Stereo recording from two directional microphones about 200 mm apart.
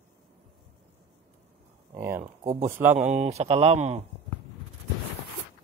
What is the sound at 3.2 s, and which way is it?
Speech, 30° right (ahead or behind).